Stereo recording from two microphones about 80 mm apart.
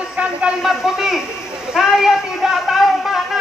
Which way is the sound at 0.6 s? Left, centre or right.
Centre.